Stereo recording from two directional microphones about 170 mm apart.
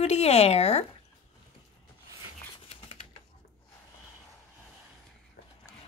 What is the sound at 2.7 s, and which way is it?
Typewriter, 35° left (ahead or behind).